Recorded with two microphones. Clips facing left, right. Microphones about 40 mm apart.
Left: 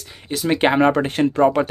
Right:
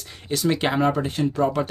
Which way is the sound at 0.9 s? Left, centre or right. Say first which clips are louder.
Left 5 dB; left.